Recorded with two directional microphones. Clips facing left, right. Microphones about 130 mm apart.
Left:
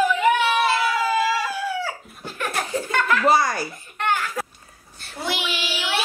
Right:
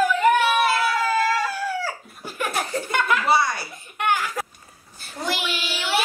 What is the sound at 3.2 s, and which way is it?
Giggle, 45° left (ahead or behind).